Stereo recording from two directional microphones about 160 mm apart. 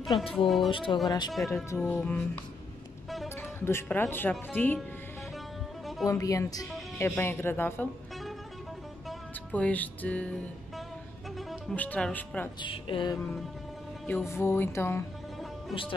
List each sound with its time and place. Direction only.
0.1 s a woman's voice: 30° left (ahead or behind)
1.8 s speech: 5° left (ahead or behind)
3.6 s speech: 15° left (ahead or behind)
6.0 s a woman's voice: 20° left (ahead or behind)
9.5 s speech: 10° left (ahead or behind)
11.3 s speech: 5° left (ahead or behind)
12.6 s speech: 35° left (ahead or behind)
13.2 s music: centre (ahead or behind)
14.0 s speech: 15° left (ahead or behind)